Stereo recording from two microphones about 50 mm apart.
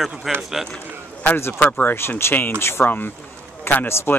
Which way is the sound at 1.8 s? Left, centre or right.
Left.